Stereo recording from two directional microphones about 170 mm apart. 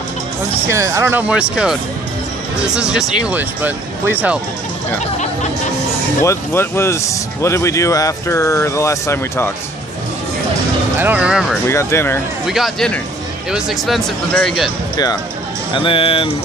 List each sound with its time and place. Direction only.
0.7 s speech: 15° right (ahead or behind)
6.2 s speech: 15° left (ahead or behind)
11.0 s speech: 10° right (ahead or behind)
11.6 s speech: 15° left (ahead or behind)
12.4 s speech: centre (ahead or behind)
15.7 s speech: 30° left (ahead or behind)